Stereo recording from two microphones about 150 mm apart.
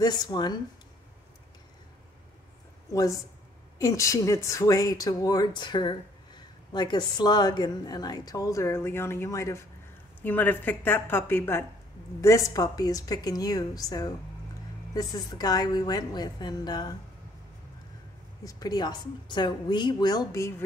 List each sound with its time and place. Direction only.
0.0 s speech: 30° left (ahead or behind)
2.9 s speech: 20° left (ahead or behind)
18.4 s speech: 25° left (ahead or behind)